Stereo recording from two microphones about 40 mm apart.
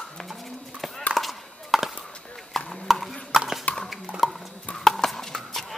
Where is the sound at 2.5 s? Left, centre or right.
Centre.